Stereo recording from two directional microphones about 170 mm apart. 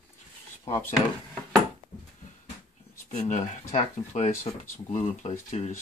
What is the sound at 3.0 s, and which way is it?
Speech, 45° left (ahead or behind).